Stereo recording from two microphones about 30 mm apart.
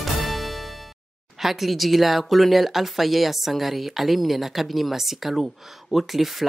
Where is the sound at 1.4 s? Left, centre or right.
Centre.